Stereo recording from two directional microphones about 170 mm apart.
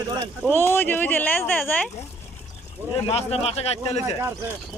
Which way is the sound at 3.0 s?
35° left (ahead or behind).